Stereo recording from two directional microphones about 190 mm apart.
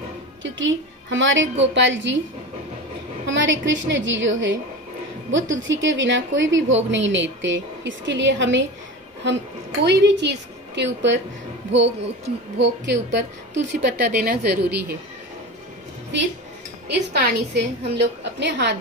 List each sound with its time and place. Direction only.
0.4 s a woman's voice: 80° right
3.3 s a woman's voice: 80° right
9.8 s a woman's voice: 60° right (ahead or behind)
16.8 s a woman's voice: 65° right (ahead or behind)